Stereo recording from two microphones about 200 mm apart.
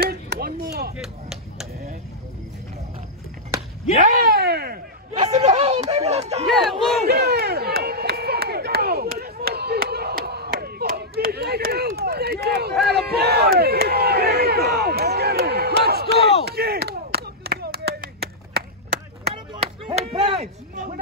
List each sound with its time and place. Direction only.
0.0 s chop: 50° right (ahead or behind)
0.9 s a sound: centre (ahead or behind)
4.0 s a sound: 50° right (ahead or behind)
5.2 s chatter: 30° right (ahead or behind)
6.4 s speech: centre (ahead or behind)
7.1 s a sound: 50° right (ahead or behind)
12.9 s crowd: 55° right (ahead or behind)
16.4 s clapping: 50° right (ahead or behind)
19.3 s chop: 25° right (ahead or behind)